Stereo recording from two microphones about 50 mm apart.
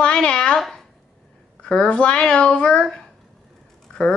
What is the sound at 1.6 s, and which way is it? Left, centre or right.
A woman's voice, left.